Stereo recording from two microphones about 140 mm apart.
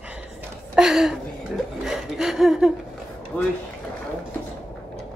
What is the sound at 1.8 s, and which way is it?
Speech, 5° right (ahead or behind).